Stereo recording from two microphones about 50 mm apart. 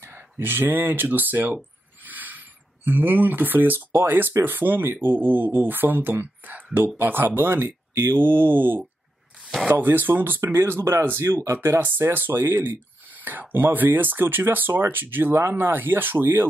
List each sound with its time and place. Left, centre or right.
0.0 s speech: right
2.0 s a sound: right
3.9 s speech: right
12.1 s speech: right